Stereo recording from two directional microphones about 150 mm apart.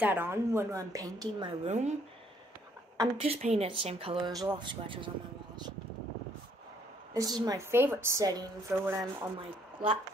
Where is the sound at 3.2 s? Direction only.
45° right (ahead or behind).